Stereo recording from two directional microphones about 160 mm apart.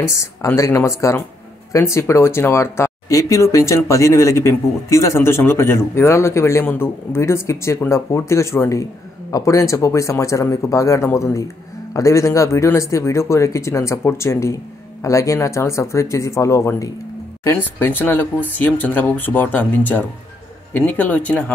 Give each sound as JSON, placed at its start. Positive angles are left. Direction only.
{"t": 0.1, "sound": "speech", "side_deg": 15}